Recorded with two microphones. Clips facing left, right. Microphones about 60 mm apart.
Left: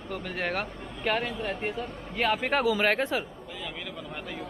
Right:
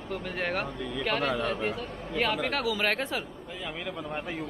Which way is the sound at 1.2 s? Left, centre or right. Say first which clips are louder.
Right 4 dB; right.